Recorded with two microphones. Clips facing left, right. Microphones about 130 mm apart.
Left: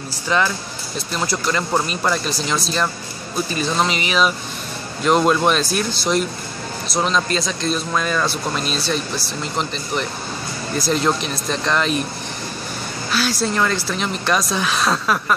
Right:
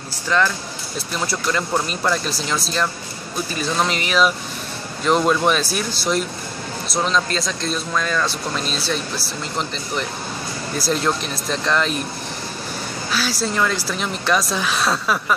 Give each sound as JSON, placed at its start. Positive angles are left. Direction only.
{"t": 0.3, "sound": "speech", "side_deg": 15}
{"t": 0.9, "sound": "speech", "side_deg": -5}
{"t": 7.9, "sound": "speech", "side_deg": 15}
{"t": 8.5, "sound": "speech", "side_deg": 0}
{"t": 11.1, "sound": "speech", "side_deg": 0}
{"t": 13.1, "sound": "speech", "side_deg": -5}